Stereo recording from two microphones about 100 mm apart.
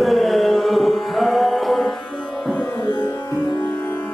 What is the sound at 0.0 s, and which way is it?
Music, centre (ahead or behind).